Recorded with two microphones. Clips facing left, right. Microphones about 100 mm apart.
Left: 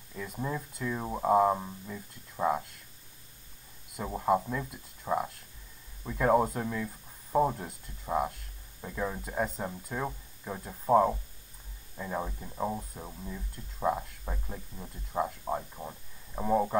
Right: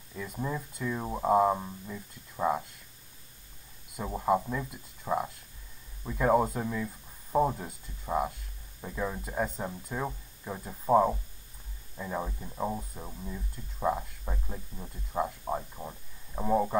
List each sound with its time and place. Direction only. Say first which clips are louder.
0.2 s speech: even; centre (ahead or behind)
3.9 s speech: even; centre (ahead or behind)